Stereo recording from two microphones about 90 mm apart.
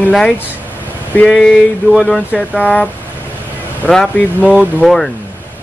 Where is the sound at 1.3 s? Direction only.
Centre (ahead or behind).